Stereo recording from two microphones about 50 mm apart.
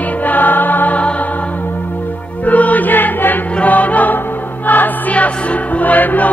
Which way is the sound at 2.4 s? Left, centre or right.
Left.